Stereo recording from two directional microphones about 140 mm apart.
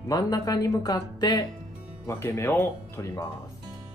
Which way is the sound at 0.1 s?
25° left (ahead or behind).